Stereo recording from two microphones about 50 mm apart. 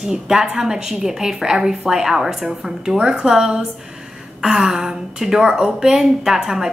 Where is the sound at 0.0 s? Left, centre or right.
Centre.